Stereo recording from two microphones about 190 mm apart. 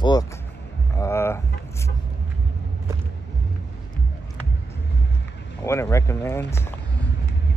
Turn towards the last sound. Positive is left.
turn(degrees=15)  # may be behind; listen again after turning